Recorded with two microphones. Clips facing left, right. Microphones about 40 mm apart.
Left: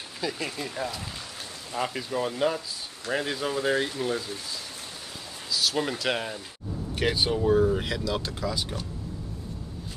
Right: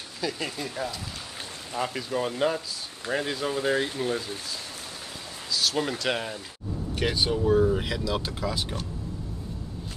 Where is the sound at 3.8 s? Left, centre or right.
Centre.